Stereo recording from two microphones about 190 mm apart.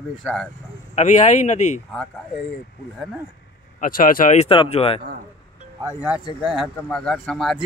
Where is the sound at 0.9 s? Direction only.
40° left (ahead or behind).